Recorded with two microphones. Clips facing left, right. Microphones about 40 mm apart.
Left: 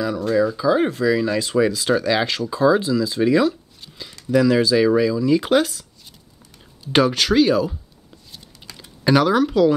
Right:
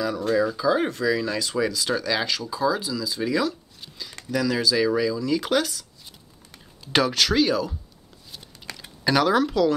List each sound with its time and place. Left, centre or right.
0.0 s speech: centre
6.9 s speech: centre
8.7 s typing: right
9.0 s speech: centre